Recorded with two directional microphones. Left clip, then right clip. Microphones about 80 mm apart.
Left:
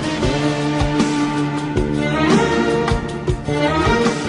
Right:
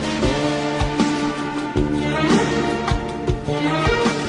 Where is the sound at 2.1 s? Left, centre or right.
Right.